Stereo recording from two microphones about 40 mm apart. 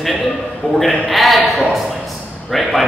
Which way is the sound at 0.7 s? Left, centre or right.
Centre.